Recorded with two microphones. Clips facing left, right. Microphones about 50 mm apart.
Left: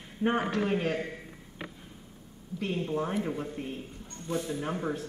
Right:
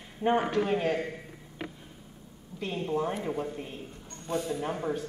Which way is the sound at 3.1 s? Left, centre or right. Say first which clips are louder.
Even; centre.